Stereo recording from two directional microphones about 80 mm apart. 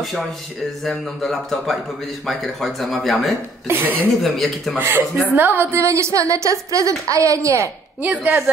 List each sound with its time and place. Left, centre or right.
0.8 s speech: centre
3.6 s a woman's voice: right
4.2 s speech: centre
4.7 s a woman's voice: right
8.0 s a woman's voice: centre